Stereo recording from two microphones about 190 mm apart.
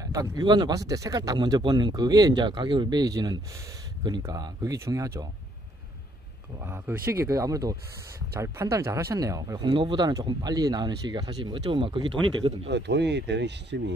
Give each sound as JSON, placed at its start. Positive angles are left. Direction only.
{"t": 0.0, "sound": "speech", "side_deg": -20}
{"t": 6.6, "sound": "speech", "side_deg": -10}
{"t": 12.6, "sound": "speech", "side_deg": -65}